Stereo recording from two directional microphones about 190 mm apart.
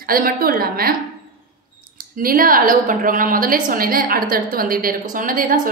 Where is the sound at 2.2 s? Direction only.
50° right (ahead or behind).